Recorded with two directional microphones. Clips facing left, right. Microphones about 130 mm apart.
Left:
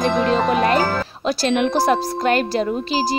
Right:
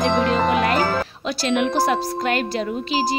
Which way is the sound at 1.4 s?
40° left (ahead or behind).